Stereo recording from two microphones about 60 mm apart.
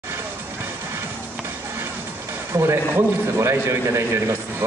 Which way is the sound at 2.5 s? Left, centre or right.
Right.